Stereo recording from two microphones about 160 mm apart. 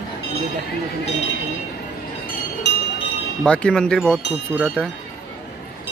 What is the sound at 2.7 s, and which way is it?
Music, 90° left.